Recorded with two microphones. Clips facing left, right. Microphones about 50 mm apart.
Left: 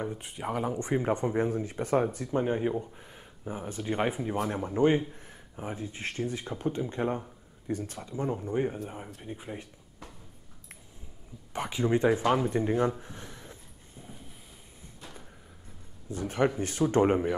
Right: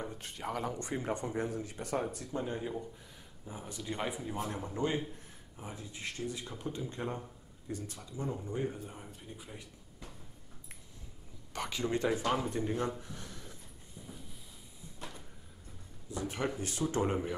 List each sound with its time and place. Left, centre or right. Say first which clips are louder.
0.0 s speech: left 6 dB; centre; by 9.7 s left
11.5 s speech: left 7 dB; left
14.0 s train: left 2 dB; left
16.1 s speech: left 8 dB; left